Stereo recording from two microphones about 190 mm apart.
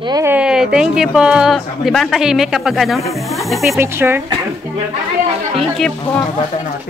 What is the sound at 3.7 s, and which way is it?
Speech, 10° right (ahead or behind).